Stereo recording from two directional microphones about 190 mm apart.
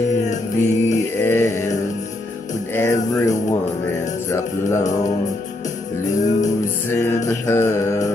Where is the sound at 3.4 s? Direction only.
40° left (ahead or behind).